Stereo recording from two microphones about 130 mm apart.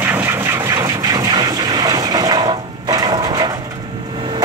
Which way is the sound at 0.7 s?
25° right (ahead or behind).